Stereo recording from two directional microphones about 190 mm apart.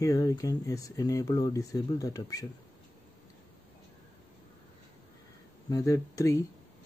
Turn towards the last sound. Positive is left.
turn(degrees=15)  # may be behind; listen again after turning